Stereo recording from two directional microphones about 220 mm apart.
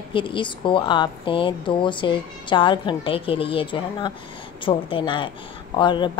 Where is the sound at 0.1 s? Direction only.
25° left (ahead or behind).